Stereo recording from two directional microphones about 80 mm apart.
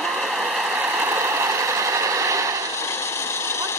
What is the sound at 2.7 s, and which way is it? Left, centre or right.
Vehicle, left.